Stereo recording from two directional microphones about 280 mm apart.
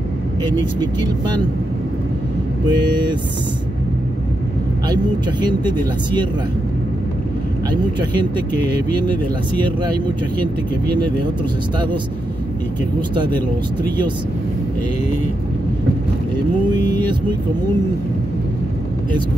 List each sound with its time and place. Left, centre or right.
0.4 s speech: centre
2.7 s speech: centre
4.8 s speech: centre
8.9 s speech: centre
16.6 s speech: centre